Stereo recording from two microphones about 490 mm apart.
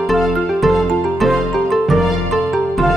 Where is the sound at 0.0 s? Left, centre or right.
Centre.